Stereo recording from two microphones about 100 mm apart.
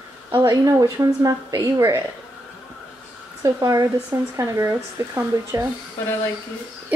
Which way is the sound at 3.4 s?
35° right (ahead or behind).